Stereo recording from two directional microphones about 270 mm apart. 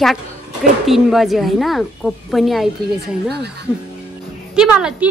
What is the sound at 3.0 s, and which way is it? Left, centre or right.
Speech, right.